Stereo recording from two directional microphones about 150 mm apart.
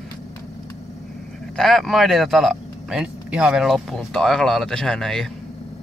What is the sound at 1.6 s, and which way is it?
Speech, centre (ahead or behind).